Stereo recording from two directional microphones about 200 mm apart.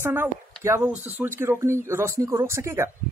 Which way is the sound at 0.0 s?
10° right (ahead or behind).